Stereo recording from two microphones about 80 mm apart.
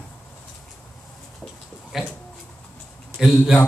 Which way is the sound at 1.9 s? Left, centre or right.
Centre.